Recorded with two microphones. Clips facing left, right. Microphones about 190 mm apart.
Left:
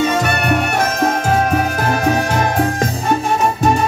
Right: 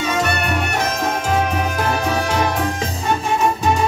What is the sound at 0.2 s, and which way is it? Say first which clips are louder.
Music: left 4 dB; 50° left (ahead or behind).